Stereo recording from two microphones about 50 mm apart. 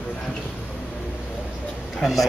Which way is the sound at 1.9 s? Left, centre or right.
Centre.